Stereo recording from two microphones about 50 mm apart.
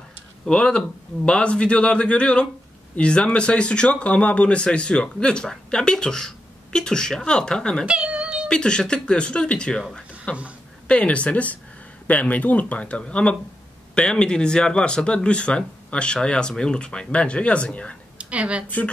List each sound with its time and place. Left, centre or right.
0.5 s speech: centre
7.8 s a sound: right
8.5 s speech: centre
18.1 s speech: right